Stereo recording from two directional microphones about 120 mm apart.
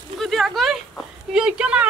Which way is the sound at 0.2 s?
Centre (ahead or behind).